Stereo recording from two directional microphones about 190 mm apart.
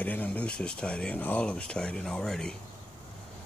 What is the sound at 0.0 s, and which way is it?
Speech, 10° left (ahead or behind).